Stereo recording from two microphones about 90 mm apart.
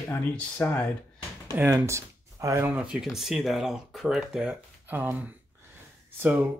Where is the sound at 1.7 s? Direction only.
35° right (ahead or behind).